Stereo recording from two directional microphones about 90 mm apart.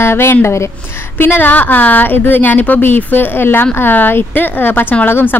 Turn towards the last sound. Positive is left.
turn(degrees=20)  # may be behind; listen again after turning